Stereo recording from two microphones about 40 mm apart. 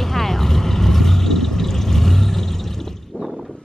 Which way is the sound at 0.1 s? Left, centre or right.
Centre.